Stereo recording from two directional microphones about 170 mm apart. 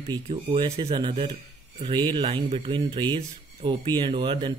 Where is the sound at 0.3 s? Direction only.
35° right (ahead or behind).